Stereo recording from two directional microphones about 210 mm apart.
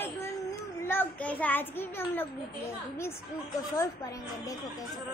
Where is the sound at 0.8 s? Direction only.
10° left (ahead or behind).